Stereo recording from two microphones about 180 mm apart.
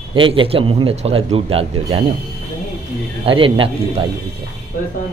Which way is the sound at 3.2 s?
30° right (ahead or behind).